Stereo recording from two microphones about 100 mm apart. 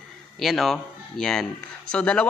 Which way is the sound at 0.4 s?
Centre (ahead or behind).